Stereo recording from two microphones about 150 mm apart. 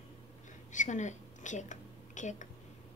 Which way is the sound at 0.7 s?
55° left (ahead or behind).